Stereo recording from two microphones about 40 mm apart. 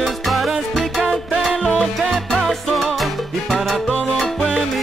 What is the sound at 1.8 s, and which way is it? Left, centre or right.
Salsa music, centre.